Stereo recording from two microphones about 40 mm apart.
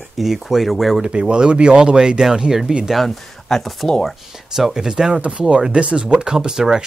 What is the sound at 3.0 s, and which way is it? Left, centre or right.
Speech, centre.